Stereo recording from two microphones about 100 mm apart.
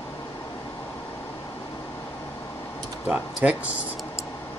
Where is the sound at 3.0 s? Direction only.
10° right (ahead or behind).